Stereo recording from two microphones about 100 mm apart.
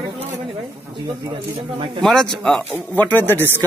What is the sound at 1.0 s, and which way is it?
Speech, 50° right (ahead or behind).